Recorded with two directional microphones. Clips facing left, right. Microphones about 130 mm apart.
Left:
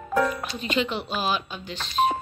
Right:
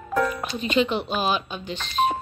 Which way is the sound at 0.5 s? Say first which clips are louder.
Right 6 dB; 20° right (ahead or behind).